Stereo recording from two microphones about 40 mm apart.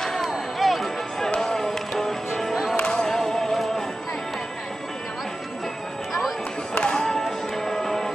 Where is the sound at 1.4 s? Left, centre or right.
Centre.